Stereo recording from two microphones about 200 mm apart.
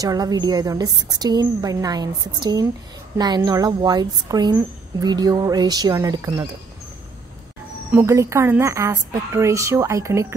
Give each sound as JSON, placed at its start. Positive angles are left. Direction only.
{"t": 0.0, "sound": "a woman's voice", "side_deg": -20}
{"t": 7.9, "sound": "a woman's voice", "side_deg": -15}